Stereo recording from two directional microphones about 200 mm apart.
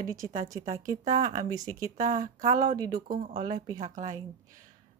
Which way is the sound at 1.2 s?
35° right (ahead or behind).